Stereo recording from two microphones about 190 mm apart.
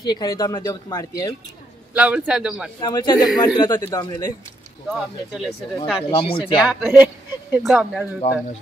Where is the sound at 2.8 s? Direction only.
20° left (ahead or behind).